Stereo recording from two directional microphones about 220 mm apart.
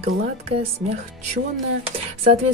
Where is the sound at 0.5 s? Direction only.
25° right (ahead or behind).